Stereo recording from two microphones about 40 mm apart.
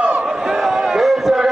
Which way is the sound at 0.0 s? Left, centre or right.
Right.